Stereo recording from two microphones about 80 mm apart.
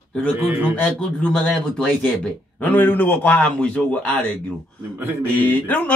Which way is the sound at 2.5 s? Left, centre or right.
Left.